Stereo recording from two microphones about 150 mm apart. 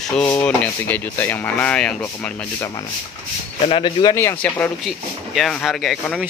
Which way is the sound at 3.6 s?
35° left (ahead or behind).